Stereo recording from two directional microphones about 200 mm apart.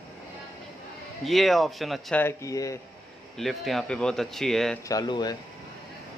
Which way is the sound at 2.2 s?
15° left (ahead or behind).